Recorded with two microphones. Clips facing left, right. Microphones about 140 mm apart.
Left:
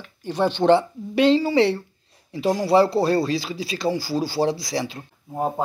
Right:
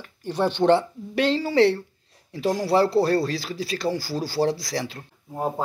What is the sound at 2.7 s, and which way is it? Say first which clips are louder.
Speech: left 2 dB; 20° left (ahead or behind).